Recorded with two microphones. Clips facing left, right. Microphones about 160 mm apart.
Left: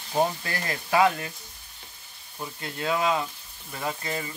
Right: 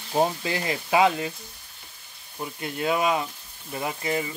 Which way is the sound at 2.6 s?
15° right (ahead or behind).